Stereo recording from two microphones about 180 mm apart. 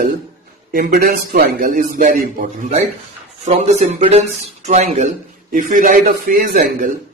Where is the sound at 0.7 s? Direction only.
50° right (ahead or behind).